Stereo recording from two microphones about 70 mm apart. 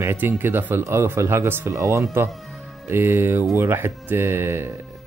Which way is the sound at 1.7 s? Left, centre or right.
Right.